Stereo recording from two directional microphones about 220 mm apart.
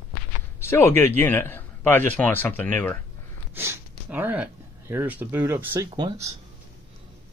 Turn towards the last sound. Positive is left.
turn(degrees=-15)  # may be behind; listen again after turning